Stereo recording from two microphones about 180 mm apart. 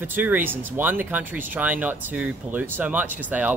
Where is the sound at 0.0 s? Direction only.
10° right (ahead or behind).